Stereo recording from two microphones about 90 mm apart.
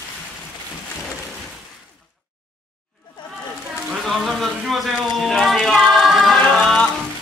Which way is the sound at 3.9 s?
Centre (ahead or behind).